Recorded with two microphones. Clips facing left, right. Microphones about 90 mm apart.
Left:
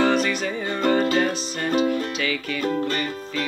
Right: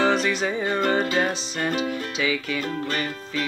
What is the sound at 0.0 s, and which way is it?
Music, 25° right (ahead or behind).